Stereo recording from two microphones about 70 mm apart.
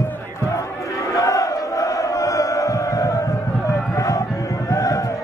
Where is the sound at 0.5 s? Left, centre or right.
Left.